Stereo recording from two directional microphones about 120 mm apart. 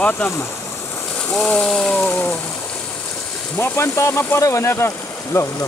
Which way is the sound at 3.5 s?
20° left (ahead or behind).